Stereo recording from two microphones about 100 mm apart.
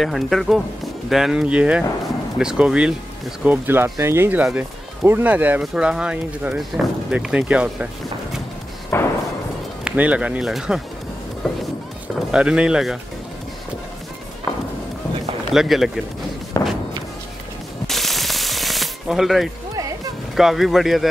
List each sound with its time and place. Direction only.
0.0 s speech: centre (ahead or behind)
3.4 s speech: 20° right (ahead or behind)
8.9 s thump: 25° left (ahead or behind)
9.8 s speech: 10° right (ahead or behind)
12.3 s speech: 10° right (ahead or behind)
15.5 s speech: 5° right (ahead or behind)
16.6 s thump: 30° left (ahead or behind)
17.8 s a sound: centre (ahead or behind)
20.3 s speech: 5° right (ahead or behind)